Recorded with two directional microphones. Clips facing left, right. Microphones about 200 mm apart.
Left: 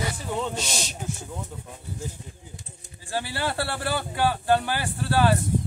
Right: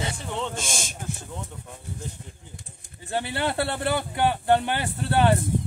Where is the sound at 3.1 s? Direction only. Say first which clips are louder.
Right 2 dB; 20° right (ahead or behind).